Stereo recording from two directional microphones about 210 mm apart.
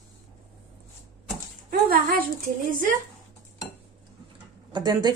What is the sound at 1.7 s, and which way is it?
A woman's voice, 45° right (ahead or behind).